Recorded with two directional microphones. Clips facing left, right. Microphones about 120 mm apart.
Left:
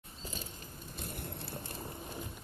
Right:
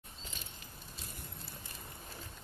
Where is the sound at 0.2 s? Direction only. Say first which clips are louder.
Left 7 dB; 40° left (ahead or behind).